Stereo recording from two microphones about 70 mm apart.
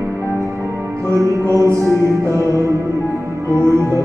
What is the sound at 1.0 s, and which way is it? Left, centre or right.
Music, right.